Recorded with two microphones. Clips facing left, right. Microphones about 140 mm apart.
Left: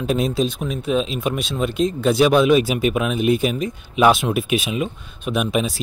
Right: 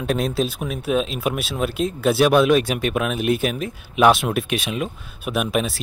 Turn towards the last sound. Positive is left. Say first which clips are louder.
# left 1 dB
turn(degrees=0)  # may be behind; listen again after turning